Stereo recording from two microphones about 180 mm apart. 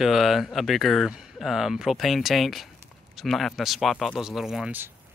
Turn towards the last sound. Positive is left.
turn(degrees=-10)  # may be behind; listen again after turning